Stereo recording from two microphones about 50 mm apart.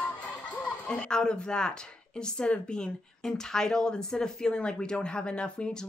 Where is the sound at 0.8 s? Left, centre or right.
Centre.